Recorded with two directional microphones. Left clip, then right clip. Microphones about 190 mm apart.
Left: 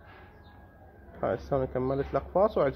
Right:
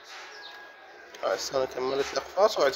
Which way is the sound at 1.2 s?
5° right (ahead or behind).